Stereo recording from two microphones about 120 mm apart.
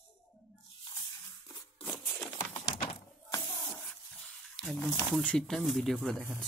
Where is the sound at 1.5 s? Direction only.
15° left (ahead or behind).